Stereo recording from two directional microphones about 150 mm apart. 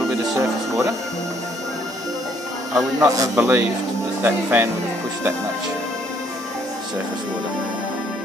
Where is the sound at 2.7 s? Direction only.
25° right (ahead or behind).